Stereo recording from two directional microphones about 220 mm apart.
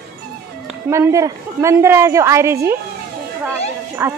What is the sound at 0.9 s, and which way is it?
Speech, 15° right (ahead or behind).